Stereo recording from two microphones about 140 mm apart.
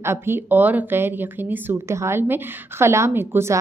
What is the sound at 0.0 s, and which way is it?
A woman's voice, 15° right (ahead or behind).